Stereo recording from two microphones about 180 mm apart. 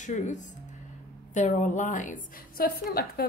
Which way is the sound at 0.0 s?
45° left (ahead or behind).